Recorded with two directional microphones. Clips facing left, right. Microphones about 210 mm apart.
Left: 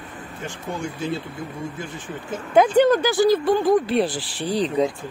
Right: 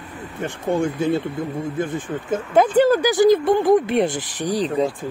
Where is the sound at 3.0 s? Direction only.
20° right (ahead or behind).